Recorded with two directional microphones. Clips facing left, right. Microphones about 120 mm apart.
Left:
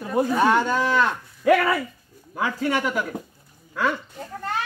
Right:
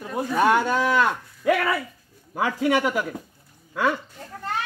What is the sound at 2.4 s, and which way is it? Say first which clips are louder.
Speech: right 2 dB; 10° right (ahead or behind).